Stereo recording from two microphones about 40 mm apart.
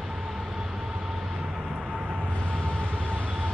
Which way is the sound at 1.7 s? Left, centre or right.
Right.